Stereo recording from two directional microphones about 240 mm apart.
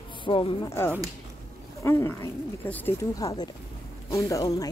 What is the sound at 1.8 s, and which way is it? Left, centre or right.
Speech, centre.